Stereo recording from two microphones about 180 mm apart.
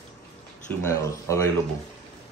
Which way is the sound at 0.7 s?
15° left (ahead or behind).